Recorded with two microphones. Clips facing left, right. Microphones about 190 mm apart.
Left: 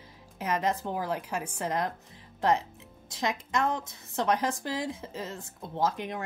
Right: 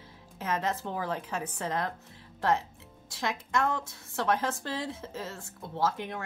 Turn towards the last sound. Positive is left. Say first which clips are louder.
# left 1 dB
turn(degrees=15)  # may be behind; listen again after turning